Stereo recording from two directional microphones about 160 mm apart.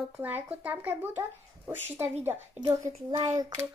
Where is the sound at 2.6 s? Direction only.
25° right (ahead or behind).